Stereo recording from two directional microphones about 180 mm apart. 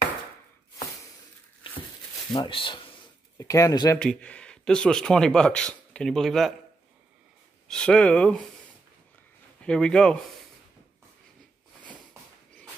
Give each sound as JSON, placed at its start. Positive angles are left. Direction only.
{"t": 2.3, "sound": "speech", "side_deg": 25}
{"t": 3.3, "sound": "speech", "side_deg": 15}
{"t": 4.0, "sound": "speech", "side_deg": 5}
{"t": 7.6, "sound": "speech", "side_deg": 5}
{"t": 9.6, "sound": "speech", "side_deg": 5}